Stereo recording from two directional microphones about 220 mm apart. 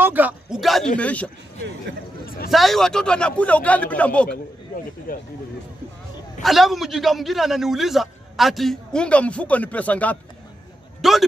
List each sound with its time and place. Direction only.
0.0 s a man's voice: 10° right (ahead or behind)
2.2 s speech: 40° left (ahead or behind)
2.5 s a man's voice: centre (ahead or behind)
5.1 s speech: 40° left (ahead or behind)
6.4 s a man's voice: centre (ahead or behind)